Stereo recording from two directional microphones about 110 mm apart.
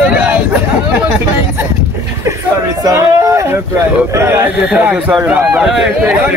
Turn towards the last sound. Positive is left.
turn(degrees=-5)  # may be behind; listen again after turning